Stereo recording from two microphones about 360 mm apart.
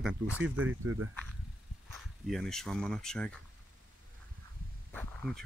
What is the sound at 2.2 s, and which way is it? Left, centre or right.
Speech, centre.